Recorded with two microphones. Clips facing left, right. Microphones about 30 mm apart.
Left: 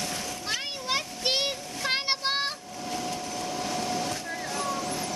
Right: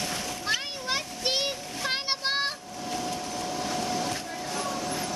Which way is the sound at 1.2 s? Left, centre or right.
Centre.